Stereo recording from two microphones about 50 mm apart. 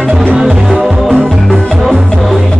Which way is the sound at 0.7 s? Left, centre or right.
Centre.